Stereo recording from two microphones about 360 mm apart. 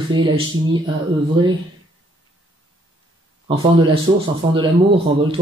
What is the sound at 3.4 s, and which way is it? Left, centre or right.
Speech, centre.